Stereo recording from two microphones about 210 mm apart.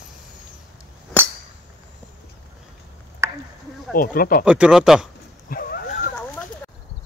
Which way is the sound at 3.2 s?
15° right (ahead or behind).